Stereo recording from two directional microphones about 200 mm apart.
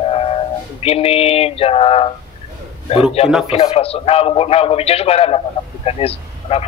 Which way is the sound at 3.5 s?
30° left (ahead or behind).